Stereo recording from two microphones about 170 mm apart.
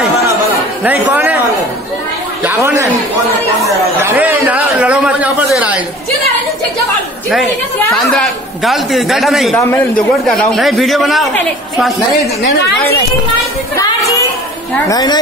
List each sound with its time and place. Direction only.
0.8 s speech: 10° right (ahead or behind)
2.4 s speech: 15° right (ahead or behind)
7.4 s a man's voice: 5° left (ahead or behind)
13.7 s speech: 20° left (ahead or behind)